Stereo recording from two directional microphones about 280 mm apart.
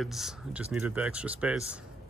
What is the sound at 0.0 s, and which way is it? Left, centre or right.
Speech, centre.